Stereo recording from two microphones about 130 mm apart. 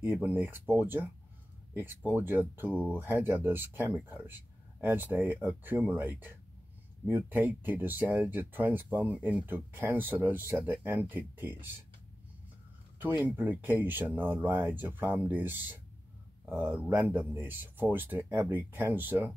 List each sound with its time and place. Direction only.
0.0 s speech: 15° right (ahead or behind)
13.0 s speech: 15° right (ahead or behind)